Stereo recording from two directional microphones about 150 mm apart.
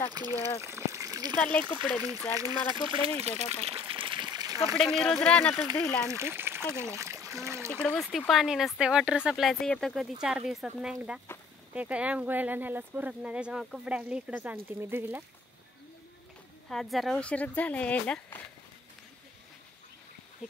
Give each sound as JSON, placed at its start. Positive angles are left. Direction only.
{"t": 0.1, "sound": "speech", "side_deg": -25}
{"t": 0.6, "sound": "water", "side_deg": -20}
{"t": 1.4, "sound": "speech", "side_deg": 5}
{"t": 2.3, "sound": "speech", "side_deg": -25}
{"t": 4.7, "sound": "speech", "side_deg": 5}
{"t": 6.0, "sound": "speech", "side_deg": -15}
{"t": 7.7, "sound": "speech", "side_deg": 5}
{"t": 16.6, "sound": "speech", "side_deg": 0}